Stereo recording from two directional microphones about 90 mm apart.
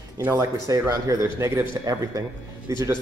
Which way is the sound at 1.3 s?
30° right (ahead or behind).